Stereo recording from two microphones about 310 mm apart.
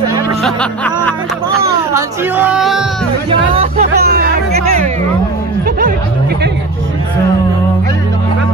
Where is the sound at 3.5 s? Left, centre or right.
Right.